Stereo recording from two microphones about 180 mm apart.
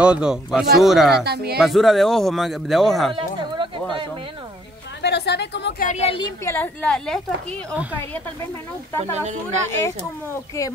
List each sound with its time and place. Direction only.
0.0 s speech: 5° right (ahead or behind)
1.2 s speech: 60° right (ahead or behind)
1.6 s speech: centre (ahead or behind)
5.0 s a woman's voice: 65° left (ahead or behind)
5.9 s a woman's voice: 35° left (ahead or behind)
6.4 s a woman's voice: 10° left (ahead or behind)
9.1 s speech: 40° right (ahead or behind)
9.7 s a woman's voice: 15° left (ahead or behind)